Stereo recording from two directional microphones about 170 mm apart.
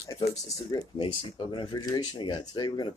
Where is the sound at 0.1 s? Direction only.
20° left (ahead or behind).